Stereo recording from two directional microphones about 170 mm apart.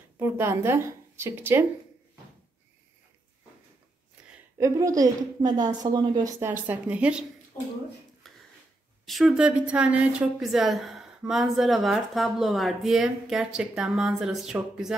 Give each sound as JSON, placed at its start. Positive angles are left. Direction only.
{"t": 0.2, "sound": "speech", "side_deg": -15}
{"t": 4.6, "sound": "a woman's voice", "side_deg": -20}
{"t": 6.5, "sound": "speech", "side_deg": -10}
{"t": 9.0, "sound": "a woman's voice", "side_deg": 0}